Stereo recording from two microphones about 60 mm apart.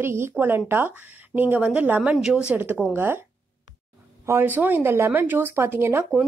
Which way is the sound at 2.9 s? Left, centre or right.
Right.